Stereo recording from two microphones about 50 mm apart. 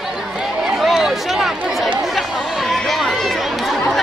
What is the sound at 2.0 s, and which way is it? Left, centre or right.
Chatter, centre.